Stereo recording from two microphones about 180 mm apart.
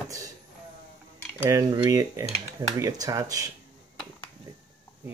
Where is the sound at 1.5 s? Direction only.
20° right (ahead or behind).